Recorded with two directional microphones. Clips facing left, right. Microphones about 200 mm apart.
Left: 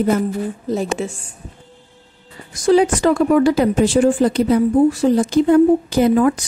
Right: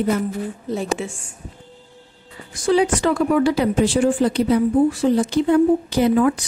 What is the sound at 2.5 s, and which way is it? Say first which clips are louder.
Speech: left 4 dB; 40° left (ahead or behind).